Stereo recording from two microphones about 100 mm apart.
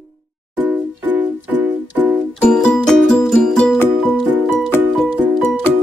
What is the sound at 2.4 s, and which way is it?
Music, 5° left (ahead or behind).